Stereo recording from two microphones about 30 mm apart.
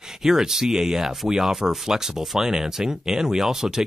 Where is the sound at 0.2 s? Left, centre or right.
Centre.